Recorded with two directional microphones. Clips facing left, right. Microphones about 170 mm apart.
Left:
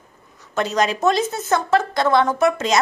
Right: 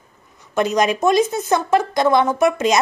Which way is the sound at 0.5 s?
15° right (ahead or behind).